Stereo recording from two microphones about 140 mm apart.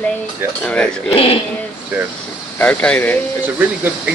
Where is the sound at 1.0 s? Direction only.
45° left (ahead or behind).